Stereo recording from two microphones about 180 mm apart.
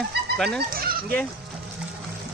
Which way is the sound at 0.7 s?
55° right (ahead or behind).